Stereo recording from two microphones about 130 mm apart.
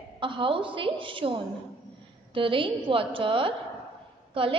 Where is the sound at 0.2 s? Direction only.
40° right (ahead or behind).